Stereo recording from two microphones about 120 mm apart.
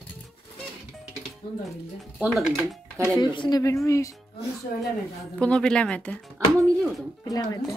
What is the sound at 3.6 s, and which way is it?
Speech, 25° left (ahead or behind).